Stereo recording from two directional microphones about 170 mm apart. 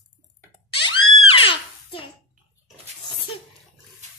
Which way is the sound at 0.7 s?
30° left (ahead or behind).